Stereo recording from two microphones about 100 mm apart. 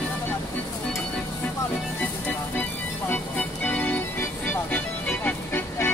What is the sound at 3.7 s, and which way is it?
Music, 20° left (ahead or behind).